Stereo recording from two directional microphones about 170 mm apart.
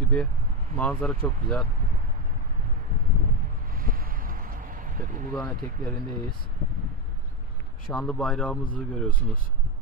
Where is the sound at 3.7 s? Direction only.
55° right (ahead or behind).